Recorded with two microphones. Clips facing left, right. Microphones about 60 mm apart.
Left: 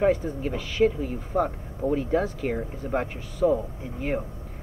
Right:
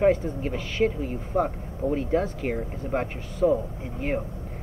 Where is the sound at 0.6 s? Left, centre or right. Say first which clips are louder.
Left 3 dB; centre.